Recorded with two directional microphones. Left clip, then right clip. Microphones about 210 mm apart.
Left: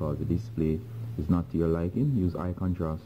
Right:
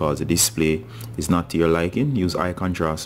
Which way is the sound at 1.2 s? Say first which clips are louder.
Right 9 dB; 15° right (ahead or behind).